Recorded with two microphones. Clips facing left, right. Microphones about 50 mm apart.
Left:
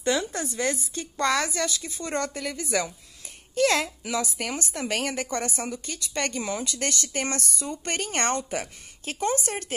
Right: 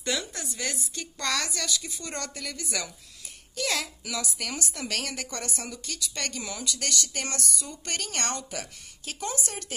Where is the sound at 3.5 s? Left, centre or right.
Left.